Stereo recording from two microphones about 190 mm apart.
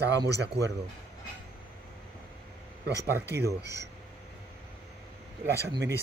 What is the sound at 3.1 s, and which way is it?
Speech, 15° right (ahead or behind).